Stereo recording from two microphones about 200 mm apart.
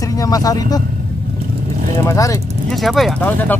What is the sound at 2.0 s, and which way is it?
Speech, 15° left (ahead or behind).